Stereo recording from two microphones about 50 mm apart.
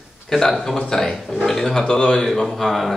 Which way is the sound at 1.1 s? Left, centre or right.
Centre.